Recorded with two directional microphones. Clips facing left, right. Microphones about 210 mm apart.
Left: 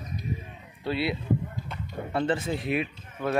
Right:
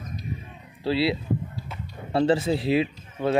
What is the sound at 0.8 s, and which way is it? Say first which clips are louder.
Speech: right 4 dB; 30° right (ahead or behind).